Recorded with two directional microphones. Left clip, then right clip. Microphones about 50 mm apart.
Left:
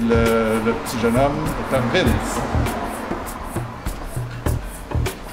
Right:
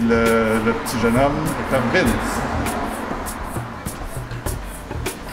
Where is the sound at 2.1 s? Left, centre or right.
Left.